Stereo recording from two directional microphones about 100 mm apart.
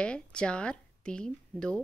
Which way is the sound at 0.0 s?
10° left (ahead or behind).